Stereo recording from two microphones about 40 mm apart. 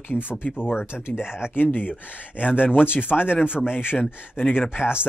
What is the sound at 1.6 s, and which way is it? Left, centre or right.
Speech, left.